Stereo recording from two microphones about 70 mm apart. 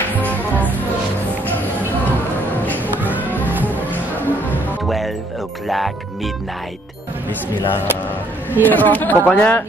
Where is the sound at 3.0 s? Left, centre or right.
Right.